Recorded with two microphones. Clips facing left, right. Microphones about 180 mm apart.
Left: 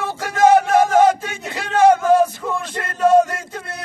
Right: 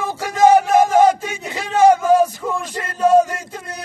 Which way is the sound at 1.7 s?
10° right (ahead or behind).